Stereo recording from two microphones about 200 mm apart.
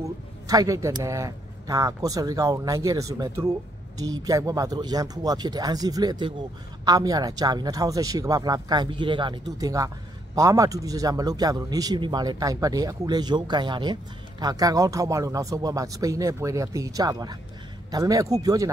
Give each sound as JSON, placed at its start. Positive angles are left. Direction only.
{"t": 0.0, "sound": "a man's voice", "side_deg": -15}